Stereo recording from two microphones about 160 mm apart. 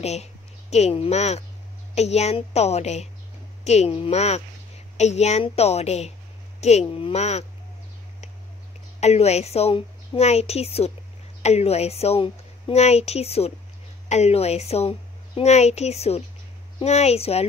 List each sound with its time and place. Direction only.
0.0 s a woman's voice: 40° left (ahead or behind)
9.0 s a woman's voice: 40° left (ahead or behind)